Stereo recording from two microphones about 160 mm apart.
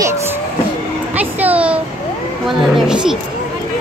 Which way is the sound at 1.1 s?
10° right (ahead or behind).